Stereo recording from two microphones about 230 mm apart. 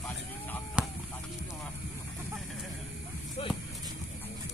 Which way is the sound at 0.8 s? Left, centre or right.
Centre.